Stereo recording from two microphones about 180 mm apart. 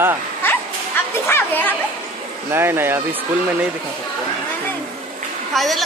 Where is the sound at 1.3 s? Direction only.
10° left (ahead or behind).